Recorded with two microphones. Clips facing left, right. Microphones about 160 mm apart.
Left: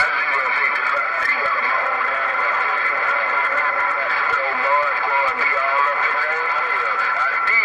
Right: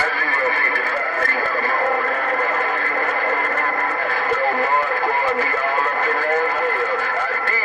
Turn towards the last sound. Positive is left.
turn(degrees=-50)  # may be behind; listen again after turning